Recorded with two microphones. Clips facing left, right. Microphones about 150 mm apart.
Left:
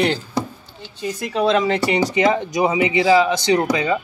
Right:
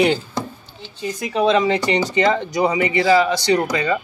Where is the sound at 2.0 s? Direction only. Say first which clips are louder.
Left 1 dB; 15° left (ahead or behind).